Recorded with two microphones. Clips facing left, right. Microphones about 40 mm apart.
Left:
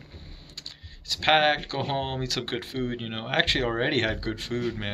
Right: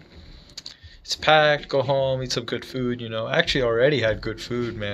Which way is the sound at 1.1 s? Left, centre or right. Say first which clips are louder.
Right 4 dB; centre.